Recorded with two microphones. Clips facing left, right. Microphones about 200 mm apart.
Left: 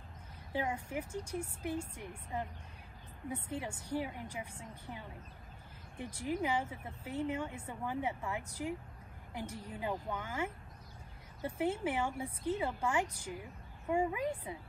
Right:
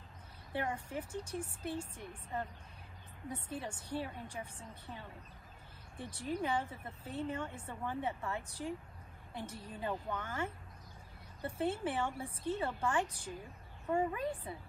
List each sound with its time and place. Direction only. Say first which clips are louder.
0.5 s speech: left 2 dB; 10° left (ahead or behind)